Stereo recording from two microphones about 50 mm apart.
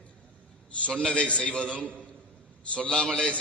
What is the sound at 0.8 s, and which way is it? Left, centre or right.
A man's voice, left.